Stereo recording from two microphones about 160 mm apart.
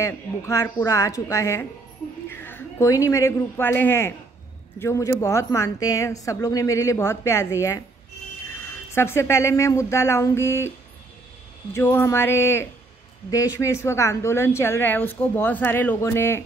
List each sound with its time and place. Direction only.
0.0 s a woman's voice: 20° left (ahead or behind)
8.9 s a woman's voice: 15° left (ahead or behind)
11.7 s a woman's voice: 15° left (ahead or behind)